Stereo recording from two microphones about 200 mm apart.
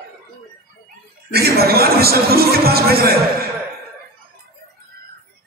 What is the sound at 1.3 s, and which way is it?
A man's voice, 50° right (ahead or behind).